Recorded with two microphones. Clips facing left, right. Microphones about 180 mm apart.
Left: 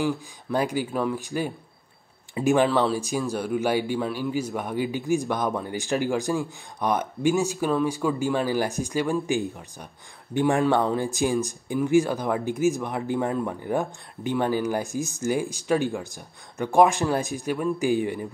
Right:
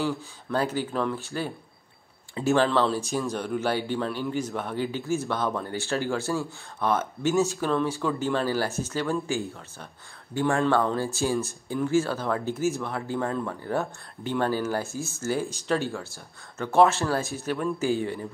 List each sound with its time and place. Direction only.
0.0 s speech: 15° left (ahead or behind)